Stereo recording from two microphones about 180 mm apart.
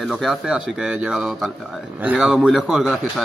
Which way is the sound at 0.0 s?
Centre (ahead or behind).